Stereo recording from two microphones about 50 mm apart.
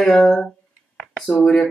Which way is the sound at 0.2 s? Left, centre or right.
Centre.